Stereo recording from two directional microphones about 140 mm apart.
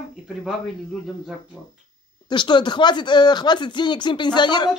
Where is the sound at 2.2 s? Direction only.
35° left (ahead or behind).